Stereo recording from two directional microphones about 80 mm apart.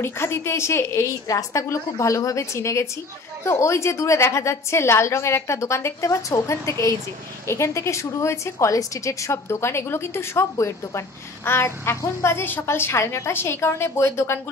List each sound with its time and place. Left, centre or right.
0.0 s a woman's voice: left